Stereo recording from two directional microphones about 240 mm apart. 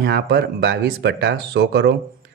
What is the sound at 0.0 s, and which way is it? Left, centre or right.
Speech, right.